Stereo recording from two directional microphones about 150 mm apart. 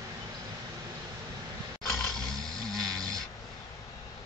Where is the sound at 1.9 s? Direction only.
5° left (ahead or behind).